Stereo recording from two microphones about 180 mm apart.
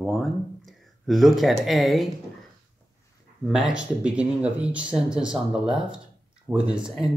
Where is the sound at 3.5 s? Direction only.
5° right (ahead or behind).